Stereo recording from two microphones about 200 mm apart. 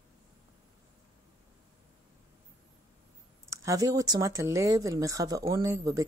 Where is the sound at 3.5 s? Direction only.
15° right (ahead or behind).